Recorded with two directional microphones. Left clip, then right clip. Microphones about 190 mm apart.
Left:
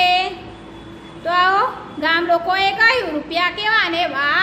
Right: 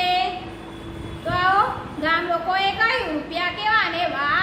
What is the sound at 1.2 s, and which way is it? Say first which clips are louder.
A woman's voice: left 4 dB; 50° left (ahead or behind).